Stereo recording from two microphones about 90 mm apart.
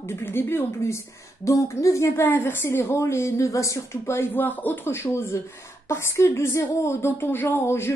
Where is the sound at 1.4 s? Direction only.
35° left (ahead or behind).